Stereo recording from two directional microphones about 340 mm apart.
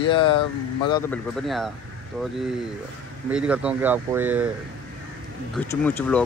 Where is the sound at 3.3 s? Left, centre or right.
Centre.